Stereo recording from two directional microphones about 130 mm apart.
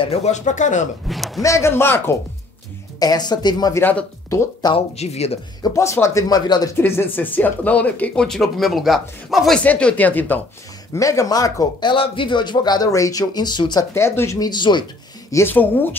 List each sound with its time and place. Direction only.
0.0 s speech: 55° left (ahead or behind); by 0.8 s 70° left (ahead or behind)
1.0 s a man's voice: centre (ahead or behind)
1.4 s speech: 20° left (ahead or behind)
3.0 s speech: 30° left (ahead or behind)
4.7 s speech: 55° left (ahead or behind)
5.6 s speech: 25° left (ahead or behind)
6.8 s speech: 15° left (ahead or behind)
10.9 s speech: 25° left (ahead or behind)
11.9 s speech: 40° left (ahead or behind)
13.9 s speech: 20° left (ahead or behind)
14.5 s speech: 35° left (ahead or behind)
15.3 s speech: 15° left (ahead or behind)